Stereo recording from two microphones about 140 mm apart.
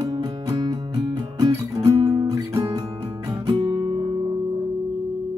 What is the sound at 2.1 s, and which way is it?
Music, 20° right (ahead or behind).